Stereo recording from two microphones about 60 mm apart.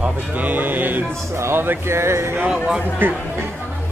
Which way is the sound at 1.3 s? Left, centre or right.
Right.